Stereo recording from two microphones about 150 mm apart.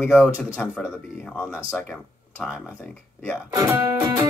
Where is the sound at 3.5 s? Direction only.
20° right (ahead or behind).